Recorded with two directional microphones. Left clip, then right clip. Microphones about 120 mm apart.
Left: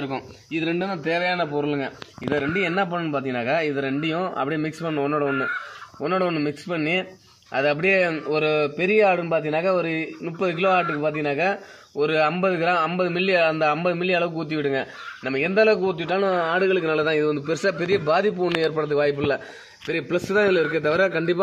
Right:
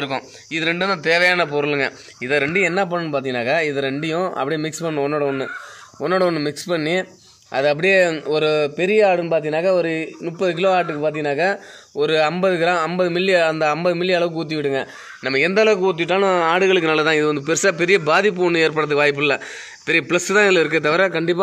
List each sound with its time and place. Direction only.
0.7 s a man's voice: 15° right (ahead or behind)
16.3 s speech: 50° right (ahead or behind)
17.0 s a man's voice: 20° right (ahead or behind)